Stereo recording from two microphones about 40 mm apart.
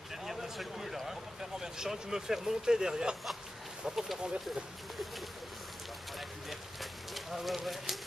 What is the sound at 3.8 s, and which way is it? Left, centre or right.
Speech, centre.